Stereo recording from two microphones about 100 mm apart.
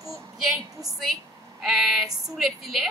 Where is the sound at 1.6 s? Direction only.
5° right (ahead or behind).